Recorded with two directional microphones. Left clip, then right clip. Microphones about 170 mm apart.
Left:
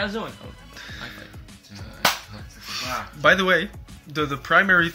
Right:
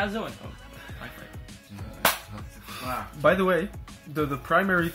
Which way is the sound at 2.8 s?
5° left (ahead or behind).